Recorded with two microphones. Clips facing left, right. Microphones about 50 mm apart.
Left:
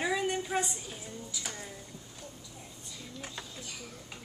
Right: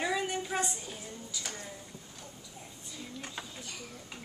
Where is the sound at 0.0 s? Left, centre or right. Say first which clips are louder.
Left 1 dB; centre.